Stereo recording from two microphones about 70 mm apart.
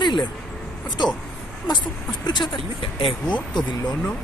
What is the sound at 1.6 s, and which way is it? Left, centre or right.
Speech, left.